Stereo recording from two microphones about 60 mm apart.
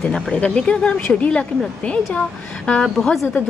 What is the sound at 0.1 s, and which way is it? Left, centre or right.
A woman's voice, centre.